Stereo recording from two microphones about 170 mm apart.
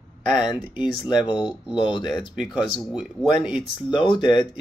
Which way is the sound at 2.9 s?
5° right (ahead or behind).